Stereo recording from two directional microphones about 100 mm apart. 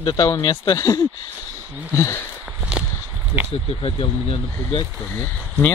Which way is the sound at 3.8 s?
65° left (ahead or behind).